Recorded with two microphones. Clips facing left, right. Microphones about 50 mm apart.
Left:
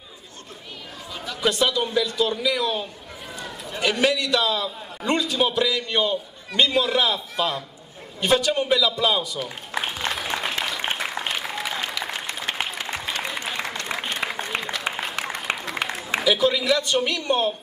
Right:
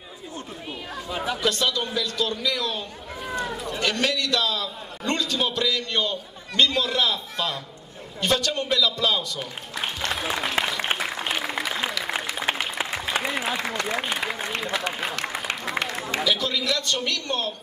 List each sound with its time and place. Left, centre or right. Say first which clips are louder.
1.1 s speech: right 6 dB; right
1.4 s a man's voice: left 5 dB; centre
9.8 s music: left 2 dB; centre
10.2 s applause: right 1 dB; centre
16.2 s a man's voice: left 5 dB; centre